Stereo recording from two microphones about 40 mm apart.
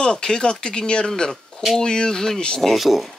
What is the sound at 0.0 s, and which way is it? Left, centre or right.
Speech, centre.